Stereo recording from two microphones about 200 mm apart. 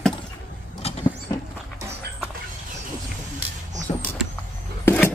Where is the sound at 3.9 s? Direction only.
40° left (ahead or behind).